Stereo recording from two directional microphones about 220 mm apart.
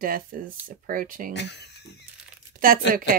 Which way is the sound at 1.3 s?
50° left (ahead or behind).